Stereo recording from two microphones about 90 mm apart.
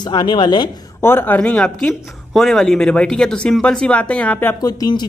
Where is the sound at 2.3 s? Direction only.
5° left (ahead or behind).